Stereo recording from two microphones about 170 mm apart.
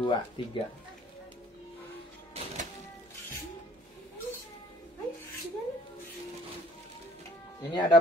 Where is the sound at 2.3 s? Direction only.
35° right (ahead or behind).